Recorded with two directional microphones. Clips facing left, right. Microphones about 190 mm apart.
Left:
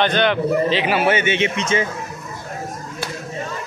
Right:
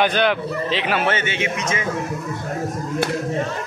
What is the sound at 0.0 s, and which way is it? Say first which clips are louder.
A man's voice: left 1 dB; 5° right (ahead or behind).